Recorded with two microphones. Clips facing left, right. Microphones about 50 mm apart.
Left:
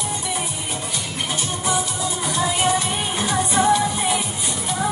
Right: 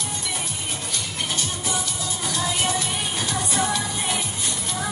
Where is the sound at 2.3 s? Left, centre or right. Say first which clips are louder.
Left 5 dB; left.